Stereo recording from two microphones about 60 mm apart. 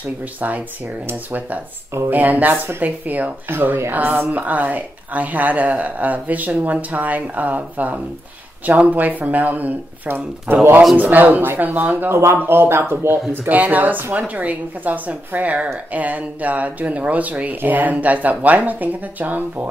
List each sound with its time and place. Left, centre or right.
0.4 s a woman's voice: right
2.0 s a woman's voice: right
12.2 s speech: right
13.3 s a woman's voice: right